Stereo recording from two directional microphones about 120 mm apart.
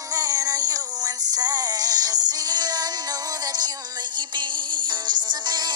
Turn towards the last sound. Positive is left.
turn(degrees=-35)  # may be behind; listen again after turning